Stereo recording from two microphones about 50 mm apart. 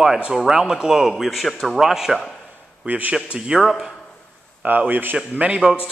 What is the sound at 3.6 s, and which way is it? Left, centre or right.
Speech, centre.